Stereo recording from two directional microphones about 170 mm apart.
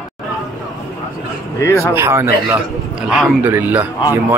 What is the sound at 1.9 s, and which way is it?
A man's voice, 15° right (ahead or behind).